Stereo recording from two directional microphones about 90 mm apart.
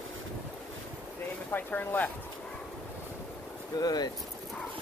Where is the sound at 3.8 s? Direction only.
50° left (ahead or behind).